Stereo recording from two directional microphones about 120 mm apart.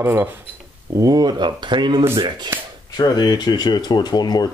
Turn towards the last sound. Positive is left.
turn(degrees=35)  # may be behind; listen again after turning